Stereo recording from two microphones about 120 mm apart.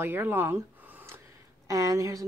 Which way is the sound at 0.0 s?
20° right (ahead or behind).